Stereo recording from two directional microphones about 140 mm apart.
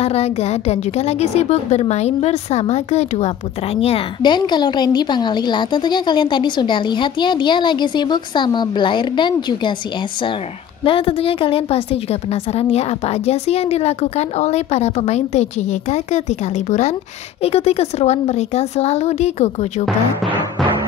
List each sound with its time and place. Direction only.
0.0 s a woman's voice: 50° left (ahead or behind)
4.2 s a woman's voice: 35° left (ahead or behind)
10.8 s a woman's voice: 40° left (ahead or behind)